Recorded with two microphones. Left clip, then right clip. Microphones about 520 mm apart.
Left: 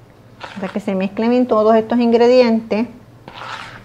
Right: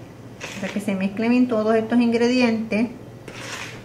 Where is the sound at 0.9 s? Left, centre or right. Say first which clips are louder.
Left 6 dB; left.